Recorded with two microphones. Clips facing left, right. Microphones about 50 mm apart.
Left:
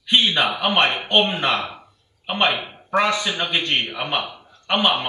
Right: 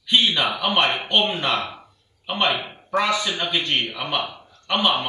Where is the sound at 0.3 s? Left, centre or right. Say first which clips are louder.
Left 2 dB; left.